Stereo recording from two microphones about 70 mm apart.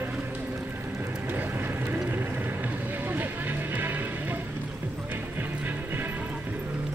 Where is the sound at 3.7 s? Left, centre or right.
Right.